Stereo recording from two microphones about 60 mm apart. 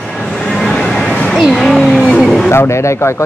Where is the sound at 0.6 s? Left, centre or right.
Centre.